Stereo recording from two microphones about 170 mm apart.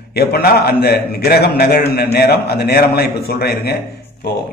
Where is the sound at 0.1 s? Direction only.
65° left (ahead or behind).